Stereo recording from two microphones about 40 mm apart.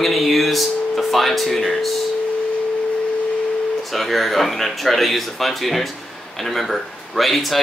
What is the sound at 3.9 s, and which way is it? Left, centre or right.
Speech, centre.